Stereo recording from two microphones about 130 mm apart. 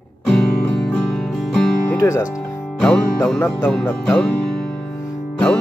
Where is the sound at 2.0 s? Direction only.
20° left (ahead or behind).